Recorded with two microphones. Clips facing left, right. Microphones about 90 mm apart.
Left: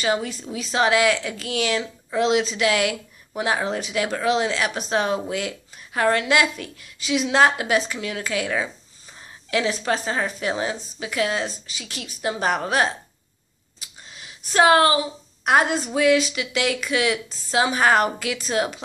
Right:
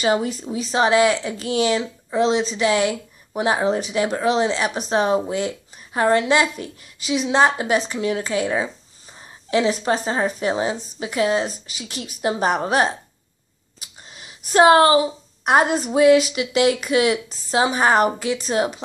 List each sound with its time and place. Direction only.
0.0 s speech: 35° right (ahead or behind)
7.1 s a woman's voice: 5° right (ahead or behind)
7.5 s speech: 35° right (ahead or behind)
14.2 s a woman's voice: 35° right (ahead or behind)
15.7 s a woman's voice: 10° right (ahead or behind)
16.3 s speech: 40° right (ahead or behind)